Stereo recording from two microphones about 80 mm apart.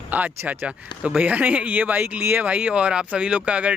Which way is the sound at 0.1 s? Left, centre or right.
Centre.